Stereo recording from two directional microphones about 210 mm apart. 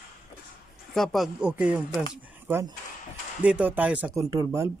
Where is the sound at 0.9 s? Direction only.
Centre (ahead or behind); by 4.7 s 15° right (ahead or behind).